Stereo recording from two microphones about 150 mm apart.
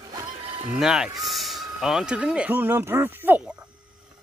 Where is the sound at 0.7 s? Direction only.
5° right (ahead or behind).